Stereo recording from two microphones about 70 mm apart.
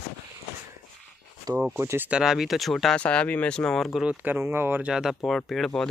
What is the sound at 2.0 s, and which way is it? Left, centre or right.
Speech, centre.